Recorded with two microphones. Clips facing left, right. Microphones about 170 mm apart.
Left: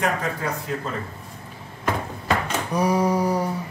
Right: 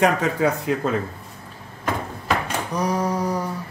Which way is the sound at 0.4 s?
90° right.